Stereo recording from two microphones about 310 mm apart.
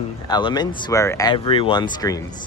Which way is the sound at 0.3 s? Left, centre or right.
Centre.